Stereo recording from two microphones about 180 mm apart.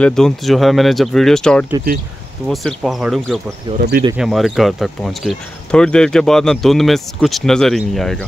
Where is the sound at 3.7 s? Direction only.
60° right (ahead or behind).